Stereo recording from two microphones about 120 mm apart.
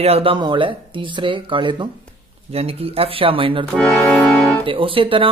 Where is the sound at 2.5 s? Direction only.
55° right (ahead or behind).